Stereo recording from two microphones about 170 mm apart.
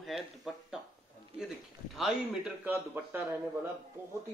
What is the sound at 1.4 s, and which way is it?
A man's voice, 5° right (ahead or behind).